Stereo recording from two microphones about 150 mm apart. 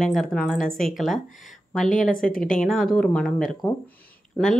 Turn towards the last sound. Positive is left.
turn(degrees=5)  # may be behind; listen again after turning